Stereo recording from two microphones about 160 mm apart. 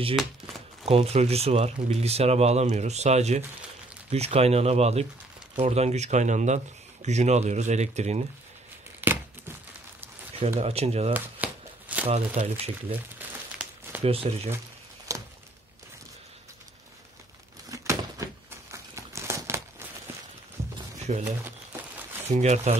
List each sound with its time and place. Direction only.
0.1 s speech: centre (ahead or behind)
0.8 s speech: 40° right (ahead or behind)
9.0 s a sound: 10° right (ahead or behind)
10.6 s speech: 40° right (ahead or behind)
11.1 s shuffling cards: 10° right (ahead or behind)
12.1 s speech: 40° right (ahead or behind)
13.2 s crumpling: 10° right (ahead or behind)
14.0 s speech: 40° right (ahead or behind)
15.1 s a sound: 20° right (ahead or behind)
17.6 s a sound: 20° right (ahead or behind)
21.1 s speech: 45° right (ahead or behind)
21.5 s a sound: 15° right (ahead or behind)
22.3 s speech: 45° right (ahead or behind)